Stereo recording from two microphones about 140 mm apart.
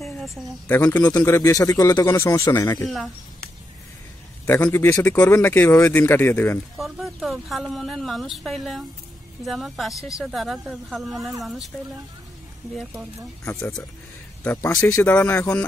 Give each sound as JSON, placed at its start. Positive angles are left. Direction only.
{"t": 0.0, "sound": "a sound", "side_deg": 0}
{"t": 0.7, "sound": "speech", "side_deg": 10}
{"t": 0.9, "sound": "speech", "side_deg": 25}
{"t": 4.5, "sound": "speech", "side_deg": 10}
{"t": 6.8, "sound": "speech", "side_deg": 0}
{"t": 14.4, "sound": "a man's voice", "side_deg": 10}